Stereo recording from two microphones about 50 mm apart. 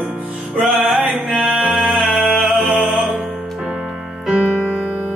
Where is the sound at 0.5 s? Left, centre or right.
Right.